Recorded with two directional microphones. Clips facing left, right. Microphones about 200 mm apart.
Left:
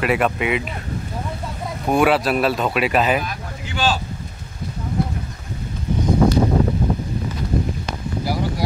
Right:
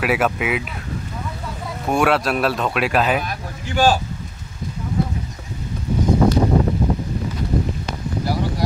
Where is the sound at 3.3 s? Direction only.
45° right (ahead or behind).